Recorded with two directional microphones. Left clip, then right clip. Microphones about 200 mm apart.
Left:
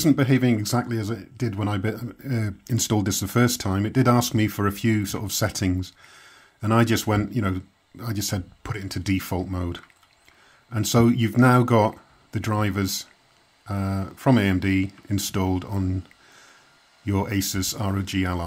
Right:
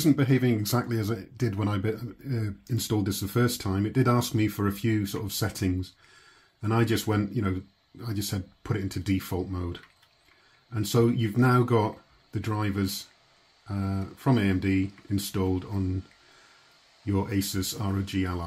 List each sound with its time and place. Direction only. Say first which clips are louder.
0.0 s speech: left 4 dB; 25° left (ahead or behind)
17.0 s speech: left 3 dB; 35° left (ahead or behind)